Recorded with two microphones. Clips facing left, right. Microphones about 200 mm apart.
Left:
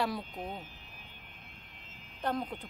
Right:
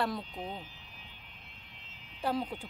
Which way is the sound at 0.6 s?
50° left (ahead or behind).